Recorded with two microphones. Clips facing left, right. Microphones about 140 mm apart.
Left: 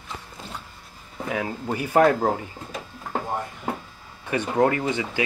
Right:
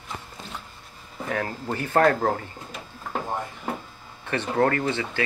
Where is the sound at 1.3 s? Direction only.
10° left (ahead or behind).